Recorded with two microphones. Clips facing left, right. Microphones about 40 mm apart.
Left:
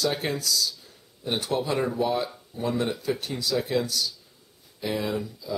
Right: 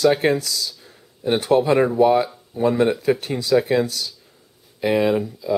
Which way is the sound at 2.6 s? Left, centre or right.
Right.